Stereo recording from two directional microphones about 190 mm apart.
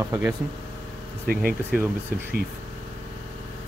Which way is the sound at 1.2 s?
50° right (ahead or behind).